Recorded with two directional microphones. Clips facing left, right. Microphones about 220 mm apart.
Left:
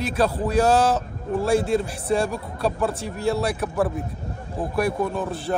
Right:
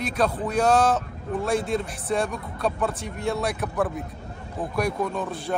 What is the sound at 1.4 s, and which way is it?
Speech, 30° left (ahead or behind).